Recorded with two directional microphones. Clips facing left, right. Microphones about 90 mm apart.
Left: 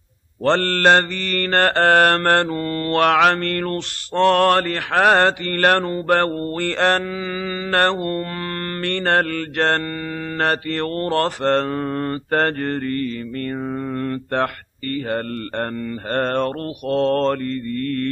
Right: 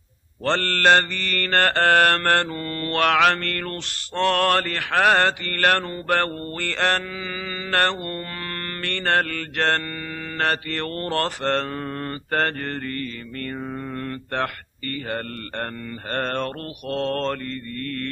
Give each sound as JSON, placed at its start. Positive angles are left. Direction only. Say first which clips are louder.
{"t": 0.4, "sound": "mantra", "louder": "left 5 dB", "side_deg": 30}